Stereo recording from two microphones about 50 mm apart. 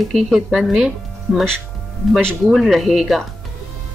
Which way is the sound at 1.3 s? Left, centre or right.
Right.